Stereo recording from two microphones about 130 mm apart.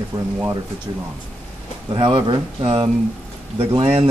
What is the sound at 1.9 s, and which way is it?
Speech, 40° right (ahead or behind).